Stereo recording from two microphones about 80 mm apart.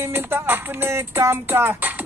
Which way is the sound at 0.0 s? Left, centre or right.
Right.